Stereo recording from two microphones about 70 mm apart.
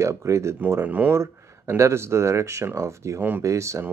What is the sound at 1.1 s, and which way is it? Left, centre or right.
Speech, right.